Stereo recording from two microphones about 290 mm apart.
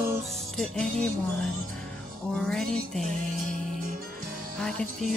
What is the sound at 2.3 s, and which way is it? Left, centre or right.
Music, centre.